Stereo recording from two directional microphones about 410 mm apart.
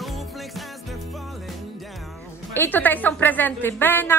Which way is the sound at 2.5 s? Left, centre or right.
Centre.